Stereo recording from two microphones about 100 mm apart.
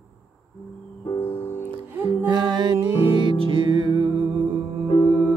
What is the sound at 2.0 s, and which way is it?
Music, 50° right (ahead or behind).